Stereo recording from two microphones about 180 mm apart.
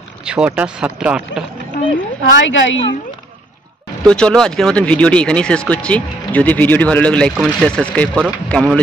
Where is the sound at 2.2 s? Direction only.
85° left.